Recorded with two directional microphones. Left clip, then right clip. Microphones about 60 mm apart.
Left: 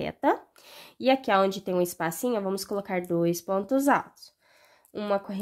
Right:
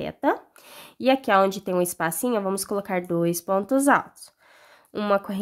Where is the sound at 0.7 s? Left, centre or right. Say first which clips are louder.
Right 2 dB; right.